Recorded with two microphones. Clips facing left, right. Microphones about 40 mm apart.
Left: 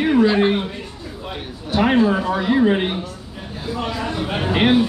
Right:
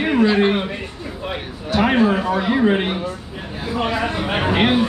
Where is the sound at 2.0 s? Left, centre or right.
Right.